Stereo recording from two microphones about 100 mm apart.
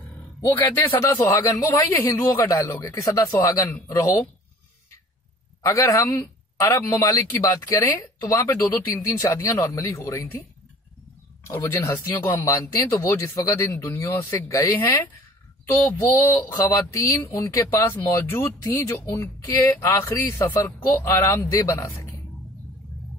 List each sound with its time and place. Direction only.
0.4 s speech: 20° left (ahead or behind)
5.6 s speech: 30° left (ahead or behind)
11.4 s speech: 25° left (ahead or behind)
13.6 s speech: 35° left (ahead or behind)
16.9 s speech: 30° left (ahead or behind)
17.9 s speech: 20° left (ahead or behind)